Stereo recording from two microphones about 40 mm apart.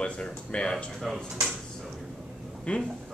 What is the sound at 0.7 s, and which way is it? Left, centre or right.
Speech, centre.